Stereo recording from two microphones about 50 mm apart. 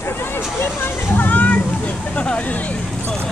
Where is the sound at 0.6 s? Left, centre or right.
Left.